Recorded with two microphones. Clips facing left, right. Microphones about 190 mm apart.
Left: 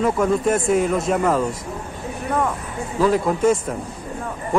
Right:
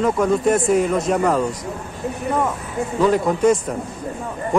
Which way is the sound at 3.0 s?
Centre (ahead or behind).